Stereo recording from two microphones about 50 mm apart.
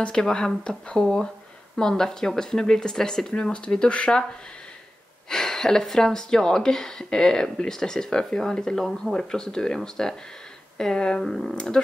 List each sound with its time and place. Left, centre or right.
0.0 s speech: centre